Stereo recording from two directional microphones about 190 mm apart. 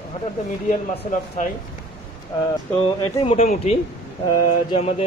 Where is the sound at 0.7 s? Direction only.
40° left (ahead or behind).